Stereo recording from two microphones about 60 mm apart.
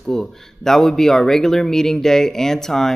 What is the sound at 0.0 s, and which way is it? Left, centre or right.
Speech, centre.